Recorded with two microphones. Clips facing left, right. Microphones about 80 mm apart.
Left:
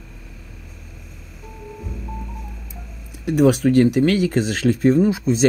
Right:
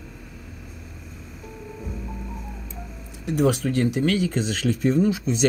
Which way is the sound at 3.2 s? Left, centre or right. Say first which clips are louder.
Left 6 dB; left.